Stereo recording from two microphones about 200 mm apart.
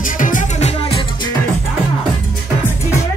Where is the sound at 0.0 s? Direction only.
40° left (ahead or behind).